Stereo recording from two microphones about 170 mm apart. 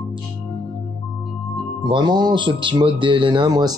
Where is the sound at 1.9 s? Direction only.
25° right (ahead or behind).